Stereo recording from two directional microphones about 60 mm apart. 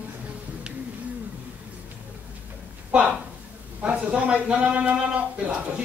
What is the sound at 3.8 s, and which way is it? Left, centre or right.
Speech, centre.